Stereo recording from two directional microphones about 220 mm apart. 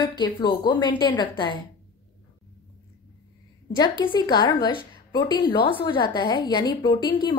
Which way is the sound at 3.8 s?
20° left (ahead or behind).